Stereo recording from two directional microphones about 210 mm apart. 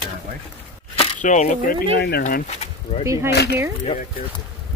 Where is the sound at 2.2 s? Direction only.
35° left (ahead or behind).